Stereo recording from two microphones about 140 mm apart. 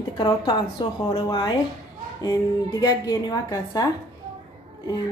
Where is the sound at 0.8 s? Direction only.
30° left (ahead or behind).